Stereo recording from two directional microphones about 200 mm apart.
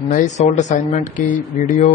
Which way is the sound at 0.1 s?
35° left (ahead or behind).